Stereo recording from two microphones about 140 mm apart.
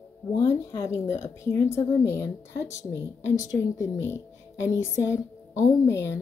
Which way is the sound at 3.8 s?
20° left (ahead or behind).